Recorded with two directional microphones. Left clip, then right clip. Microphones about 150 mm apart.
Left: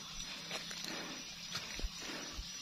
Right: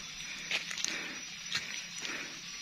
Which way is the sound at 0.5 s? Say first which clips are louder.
Right 10 dB; 10° left (ahead or behind).